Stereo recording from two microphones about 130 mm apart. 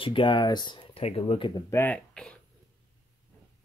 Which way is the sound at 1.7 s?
15° left (ahead or behind).